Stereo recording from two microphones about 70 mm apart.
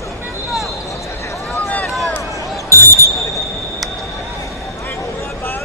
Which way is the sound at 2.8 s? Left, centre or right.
Left.